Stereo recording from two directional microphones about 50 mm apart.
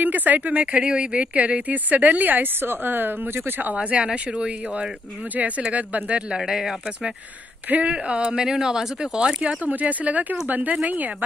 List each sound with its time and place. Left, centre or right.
0.0 s speech: right
0.7 s speech: right
2.6 s speech: right
3.7 s speech: right
6.3 s speech: centre
7.7 s speech: right